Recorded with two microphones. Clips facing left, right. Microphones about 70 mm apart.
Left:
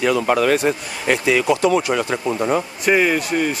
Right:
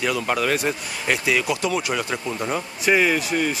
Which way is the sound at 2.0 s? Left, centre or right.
Centre.